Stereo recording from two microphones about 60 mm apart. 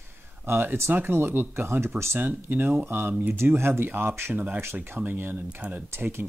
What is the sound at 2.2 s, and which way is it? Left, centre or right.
Speech, right.